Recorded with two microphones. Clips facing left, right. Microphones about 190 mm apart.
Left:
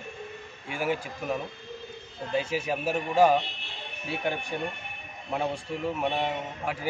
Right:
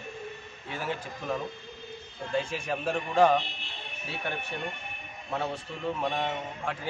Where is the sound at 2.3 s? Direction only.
5° left (ahead or behind).